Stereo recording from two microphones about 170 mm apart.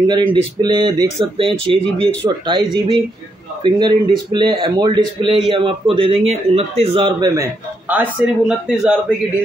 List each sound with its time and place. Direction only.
0.0 s a man's voice: 25° right (ahead or behind)
7.9 s a man's voice: 5° right (ahead or behind)